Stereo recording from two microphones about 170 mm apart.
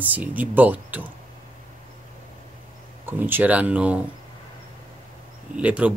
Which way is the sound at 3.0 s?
10° right (ahead or behind).